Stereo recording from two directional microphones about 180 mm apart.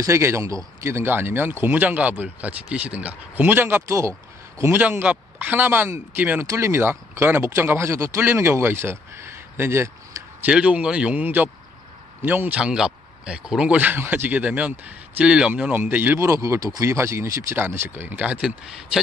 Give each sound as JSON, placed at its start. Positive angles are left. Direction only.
{"t": 0.0, "sound": "speech", "side_deg": -15}